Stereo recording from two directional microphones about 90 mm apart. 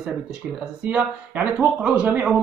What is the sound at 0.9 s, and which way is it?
Speech, 15° right (ahead or behind).